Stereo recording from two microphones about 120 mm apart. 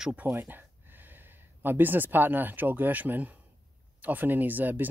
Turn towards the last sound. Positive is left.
turn(degrees=-15)  # may be behind; listen again after turning